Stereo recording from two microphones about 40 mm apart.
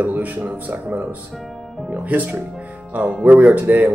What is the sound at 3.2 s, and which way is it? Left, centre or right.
Speech, right.